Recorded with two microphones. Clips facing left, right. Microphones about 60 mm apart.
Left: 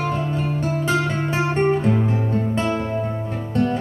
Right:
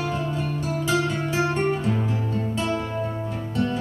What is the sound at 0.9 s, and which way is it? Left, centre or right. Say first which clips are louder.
Music: even; left.